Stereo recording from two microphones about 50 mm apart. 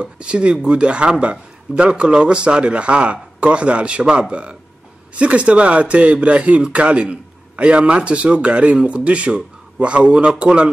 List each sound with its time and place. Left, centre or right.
0.0 s speech: right